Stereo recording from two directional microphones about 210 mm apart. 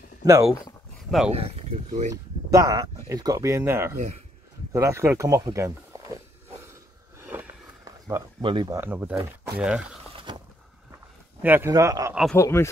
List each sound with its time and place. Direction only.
0.2 s speech: 15° right (ahead or behind)
1.3 s speech: 30° right (ahead or behind)
2.5 s speech: 15° right (ahead or behind)
6.7 s a sound: 10° right (ahead or behind)
8.4 s speech: 20° right (ahead or behind); by 9.9 s 5° right (ahead or behind)
10.1 s a sound: 20° right (ahead or behind)
11.4 s speech: 10° right (ahead or behind)
12.4 s speech: 10° left (ahead or behind)